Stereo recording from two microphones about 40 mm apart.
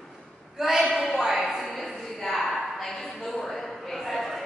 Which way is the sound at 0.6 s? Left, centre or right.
Centre.